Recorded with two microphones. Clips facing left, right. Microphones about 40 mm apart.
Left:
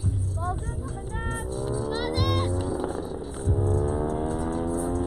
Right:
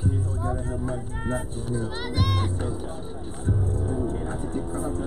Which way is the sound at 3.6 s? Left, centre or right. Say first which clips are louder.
Left 5 dB; left.